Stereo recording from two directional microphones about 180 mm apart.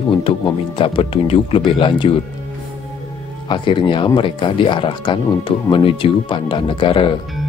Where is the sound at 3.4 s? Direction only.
25° left (ahead or behind).